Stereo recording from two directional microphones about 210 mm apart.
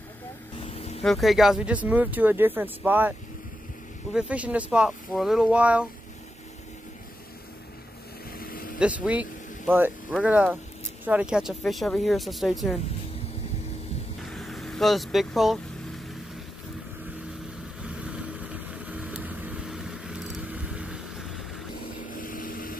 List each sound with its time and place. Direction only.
0.7 s vehicle: 30° left (ahead or behind)
1.0 s speech: centre (ahead or behind)
8.4 s vehicle: 45° left (ahead or behind)
8.7 s speech: 5° right (ahead or behind)
14.2 s vehicle: centre (ahead or behind)
17.8 s vehicle: 5° right (ahead or behind)
22.1 s vehicle: 40° left (ahead or behind)